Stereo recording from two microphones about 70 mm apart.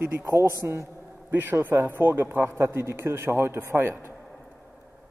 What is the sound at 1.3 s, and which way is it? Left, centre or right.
A man's voice, right.